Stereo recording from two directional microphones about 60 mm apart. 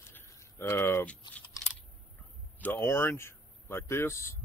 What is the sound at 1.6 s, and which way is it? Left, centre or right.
Computer keyboard, left.